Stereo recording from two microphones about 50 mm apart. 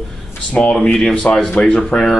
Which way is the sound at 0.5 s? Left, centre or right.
Left.